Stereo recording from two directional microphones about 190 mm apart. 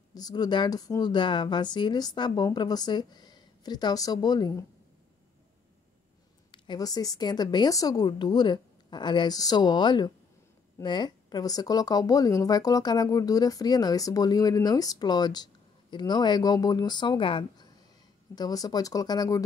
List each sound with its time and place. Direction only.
0.1 s a woman's voice: 20° left (ahead or behind)
6.5 s a woman's voice: 20° left (ahead or behind)